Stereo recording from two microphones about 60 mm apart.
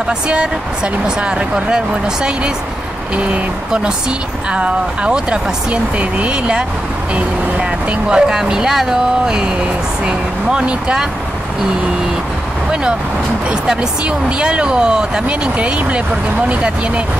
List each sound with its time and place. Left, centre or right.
1.0 s speech: centre
3.2 s speech: centre
8.1 s speech: centre
13.5 s speech: centre